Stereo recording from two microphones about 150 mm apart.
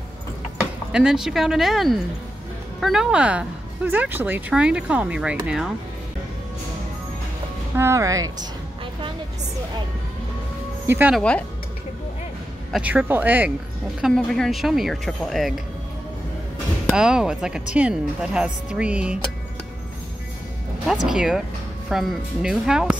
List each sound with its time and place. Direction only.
0.6 s speech: 5° right (ahead or behind)
7.7 s speech: 20° right (ahead or behind)
10.9 s speech: 10° right (ahead or behind)
11.1 s speech: 5° left (ahead or behind)
12.7 s speech: 10° right (ahead or behind)
14.0 s a woman's voice: 5° left (ahead or behind)
16.9 s speech: 5° right (ahead or behind)
20.8 s a woman's voice: 5° right (ahead or behind)